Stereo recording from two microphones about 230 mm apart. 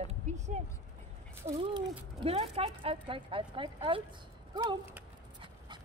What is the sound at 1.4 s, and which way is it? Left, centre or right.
Speech, centre.